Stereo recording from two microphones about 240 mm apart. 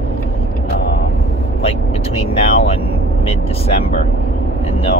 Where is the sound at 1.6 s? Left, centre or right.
Left.